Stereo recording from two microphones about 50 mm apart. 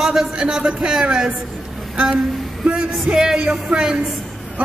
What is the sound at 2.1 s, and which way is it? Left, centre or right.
Music, right.